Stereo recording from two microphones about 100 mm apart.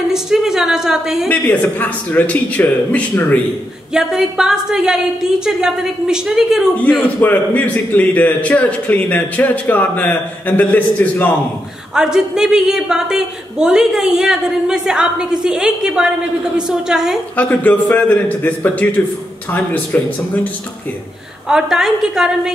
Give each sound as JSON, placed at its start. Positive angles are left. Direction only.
{"t": 0.1, "sound": "a woman's voice", "side_deg": -5}
{"t": 1.3, "sound": "a man's voice", "side_deg": 15}
{"t": 3.9, "sound": "a woman's voice", "side_deg": -5}
{"t": 6.8, "sound": "a man's voice", "side_deg": 15}
{"t": 11.9, "sound": "a woman's voice", "side_deg": -5}
{"t": 17.4, "sound": "a man's voice", "side_deg": 15}
{"t": 21.5, "sound": "a woman's voice", "side_deg": -5}